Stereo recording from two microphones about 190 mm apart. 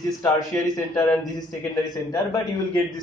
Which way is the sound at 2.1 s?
20° left (ahead or behind).